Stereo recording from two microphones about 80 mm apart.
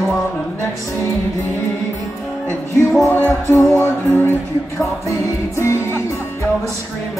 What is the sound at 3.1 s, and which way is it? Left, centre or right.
Music, left.